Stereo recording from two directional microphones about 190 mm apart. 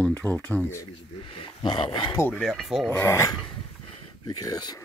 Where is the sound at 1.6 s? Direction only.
25° left (ahead or behind).